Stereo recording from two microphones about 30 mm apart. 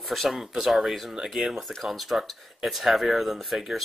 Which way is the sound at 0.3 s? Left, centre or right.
Centre.